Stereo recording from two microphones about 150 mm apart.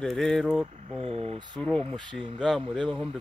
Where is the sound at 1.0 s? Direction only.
40° right (ahead or behind).